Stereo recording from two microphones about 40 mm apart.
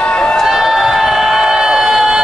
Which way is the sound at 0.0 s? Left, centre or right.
Left.